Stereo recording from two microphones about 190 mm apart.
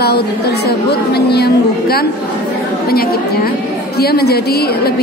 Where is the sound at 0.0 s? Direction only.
55° left (ahead or behind).